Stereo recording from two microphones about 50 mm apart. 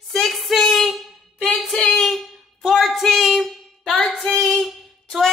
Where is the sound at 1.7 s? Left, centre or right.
Centre.